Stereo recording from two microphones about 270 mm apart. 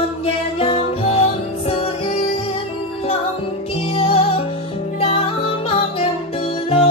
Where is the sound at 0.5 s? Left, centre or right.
Left.